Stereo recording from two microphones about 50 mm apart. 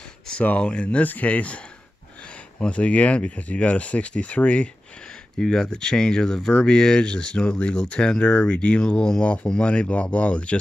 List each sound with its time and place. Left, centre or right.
0.4 s speech: left
2.6 s speech: left
5.4 s speech: centre